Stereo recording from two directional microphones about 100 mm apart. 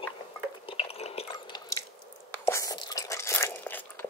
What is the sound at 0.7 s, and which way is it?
Drip, 75° left (ahead or behind).